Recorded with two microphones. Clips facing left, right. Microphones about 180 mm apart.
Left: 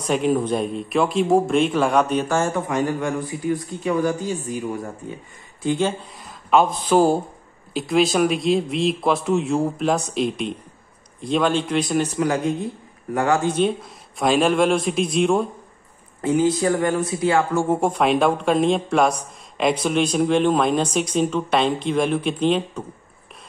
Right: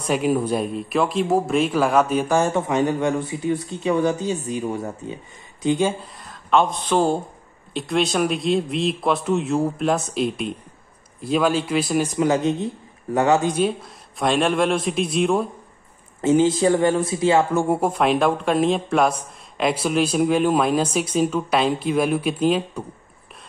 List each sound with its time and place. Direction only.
0.0 s speech: 5° right (ahead or behind)
6.2 s speech: 5° left (ahead or behind); by 13.6 s 20° right (ahead or behind)
13.6 s speech: centre (ahead or behind)
16.2 s speech: 25° right (ahead or behind)
17.7 s speech: centre (ahead or behind)